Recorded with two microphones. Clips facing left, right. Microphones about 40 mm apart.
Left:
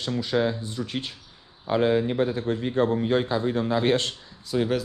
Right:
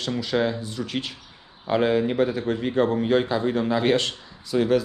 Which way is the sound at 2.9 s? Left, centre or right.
Right.